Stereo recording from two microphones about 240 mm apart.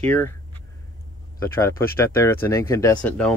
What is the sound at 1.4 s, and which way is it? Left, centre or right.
Speech, centre.